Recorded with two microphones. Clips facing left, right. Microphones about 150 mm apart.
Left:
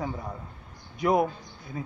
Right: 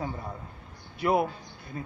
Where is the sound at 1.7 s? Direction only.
5° left (ahead or behind).